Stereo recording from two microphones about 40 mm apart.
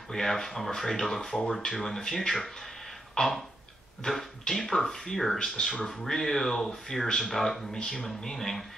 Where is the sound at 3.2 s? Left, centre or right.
Left.